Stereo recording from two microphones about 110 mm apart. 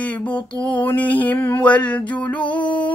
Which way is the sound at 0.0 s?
15° left (ahead or behind).